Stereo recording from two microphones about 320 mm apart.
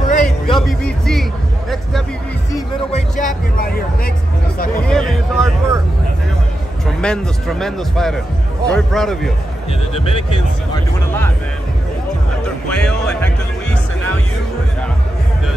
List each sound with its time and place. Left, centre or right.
0.1 s music: left
0.6 s speech: centre
2.5 s music: left
4.8 s a sound: centre
7.0 s speech: centre
9.7 s speech: centre
12.6 s speech: centre